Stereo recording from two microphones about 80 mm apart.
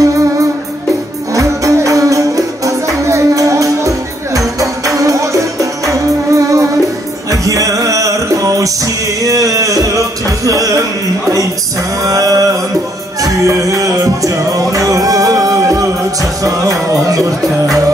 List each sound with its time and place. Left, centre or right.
0.0 s music: right
12.0 s a sound: right
13.2 s music: right